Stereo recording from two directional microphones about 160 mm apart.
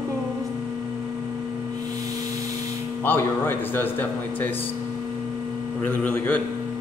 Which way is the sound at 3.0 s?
15° left (ahead or behind).